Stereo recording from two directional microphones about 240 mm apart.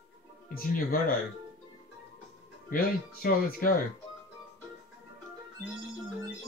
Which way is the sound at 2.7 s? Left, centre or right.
Left.